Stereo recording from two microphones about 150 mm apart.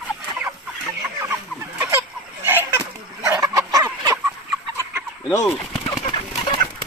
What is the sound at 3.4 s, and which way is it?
Fowl, 25° right (ahead or behind).